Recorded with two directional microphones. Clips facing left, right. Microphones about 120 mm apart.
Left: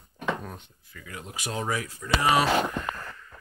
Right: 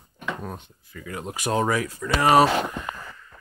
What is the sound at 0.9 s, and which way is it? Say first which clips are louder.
Speech: right 7 dB; 50° right (ahead or behind).